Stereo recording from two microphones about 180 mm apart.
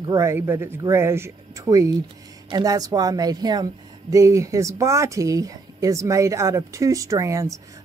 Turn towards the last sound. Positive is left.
turn(degrees=-15)  # may be behind; listen again after turning